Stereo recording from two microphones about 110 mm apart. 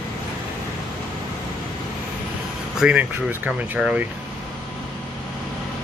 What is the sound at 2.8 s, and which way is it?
Speech, 10° right (ahead or behind).